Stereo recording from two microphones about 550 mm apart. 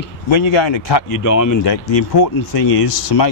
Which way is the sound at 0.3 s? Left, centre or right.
Left.